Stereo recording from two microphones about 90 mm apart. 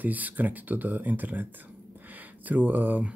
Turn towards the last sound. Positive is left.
turn(degrees=-20)  # may be behind; listen again after turning